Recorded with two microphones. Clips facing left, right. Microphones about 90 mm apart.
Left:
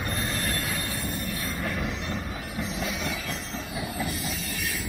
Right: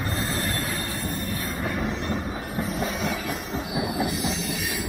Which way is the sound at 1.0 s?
35° right (ahead or behind).